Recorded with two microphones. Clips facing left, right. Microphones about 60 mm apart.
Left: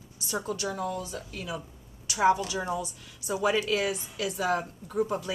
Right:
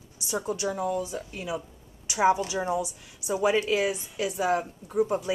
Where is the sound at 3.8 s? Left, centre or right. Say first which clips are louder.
Right 2 dB; centre.